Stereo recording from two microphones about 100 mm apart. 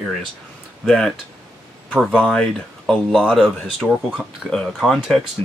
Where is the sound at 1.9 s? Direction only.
5° right (ahead or behind).